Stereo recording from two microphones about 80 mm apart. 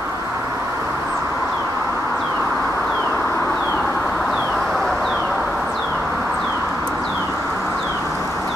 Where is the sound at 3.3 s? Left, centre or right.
Left.